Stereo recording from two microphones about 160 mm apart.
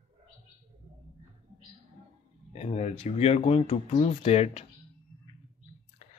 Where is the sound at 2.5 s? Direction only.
45° left (ahead or behind).